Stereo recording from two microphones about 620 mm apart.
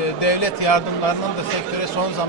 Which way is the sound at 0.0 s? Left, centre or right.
Left.